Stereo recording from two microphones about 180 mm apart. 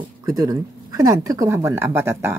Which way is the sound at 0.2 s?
20° right (ahead or behind).